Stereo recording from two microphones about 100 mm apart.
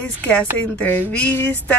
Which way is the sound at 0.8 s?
15° left (ahead or behind).